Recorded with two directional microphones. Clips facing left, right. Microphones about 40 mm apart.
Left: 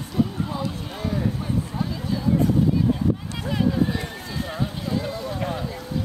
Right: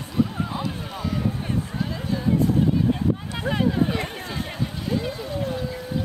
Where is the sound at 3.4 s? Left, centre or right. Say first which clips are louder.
Right 1 dB; right.